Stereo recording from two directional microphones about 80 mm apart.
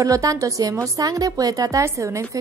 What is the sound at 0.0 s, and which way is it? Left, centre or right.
A woman's voice, right.